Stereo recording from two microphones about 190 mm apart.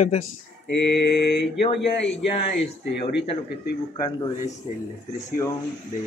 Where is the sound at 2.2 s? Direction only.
30° left (ahead or behind).